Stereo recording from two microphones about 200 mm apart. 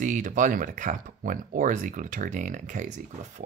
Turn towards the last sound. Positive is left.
turn(degrees=-35)  # may be behind; listen again after turning